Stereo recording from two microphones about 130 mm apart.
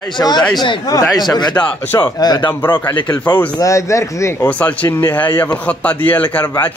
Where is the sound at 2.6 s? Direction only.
15° left (ahead or behind).